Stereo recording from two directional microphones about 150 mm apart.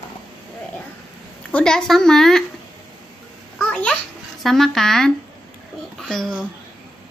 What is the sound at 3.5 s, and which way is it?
Babbling, 10° left (ahead or behind).